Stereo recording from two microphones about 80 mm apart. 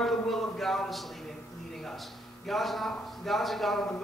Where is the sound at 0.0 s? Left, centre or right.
Centre.